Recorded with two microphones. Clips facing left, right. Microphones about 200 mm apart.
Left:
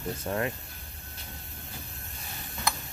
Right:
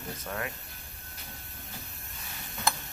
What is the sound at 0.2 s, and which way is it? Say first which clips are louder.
Speech: left 6 dB; 30° left (ahead or behind).